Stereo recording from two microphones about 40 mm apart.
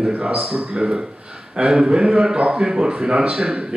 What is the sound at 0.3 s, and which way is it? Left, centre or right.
A man's voice, right.